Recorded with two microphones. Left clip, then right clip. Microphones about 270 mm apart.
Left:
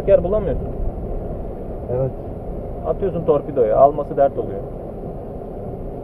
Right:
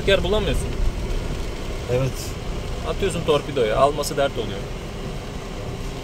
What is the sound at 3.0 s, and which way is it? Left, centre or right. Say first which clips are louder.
Speech: left 2 dB; centre.